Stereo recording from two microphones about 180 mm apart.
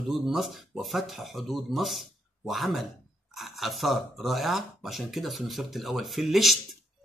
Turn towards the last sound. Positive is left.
turn(degrees=0)  # may be behind; listen again after turning